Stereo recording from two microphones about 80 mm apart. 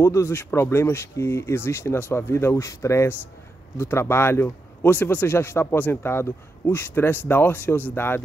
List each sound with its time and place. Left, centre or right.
0.0 s speech: left
0.3 s a man's voice: left